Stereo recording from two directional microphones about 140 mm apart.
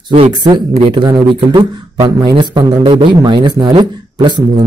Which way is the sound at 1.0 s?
30° right (ahead or behind).